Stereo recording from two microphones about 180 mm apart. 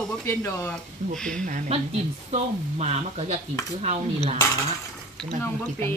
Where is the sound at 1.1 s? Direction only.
5° left (ahead or behind).